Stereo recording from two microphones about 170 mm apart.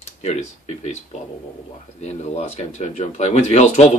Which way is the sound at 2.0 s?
40° left (ahead or behind).